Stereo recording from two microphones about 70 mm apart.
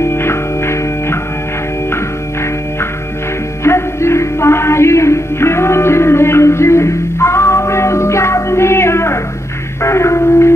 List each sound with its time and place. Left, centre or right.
0.0 s music: left
3.6 s music: left